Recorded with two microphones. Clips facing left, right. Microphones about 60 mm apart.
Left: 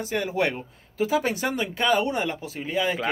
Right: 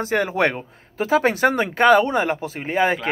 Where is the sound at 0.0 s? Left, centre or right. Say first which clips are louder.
Right 5 dB; right.